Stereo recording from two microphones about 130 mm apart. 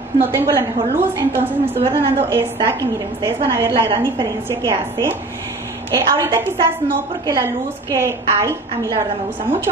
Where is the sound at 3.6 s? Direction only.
40° right (ahead or behind).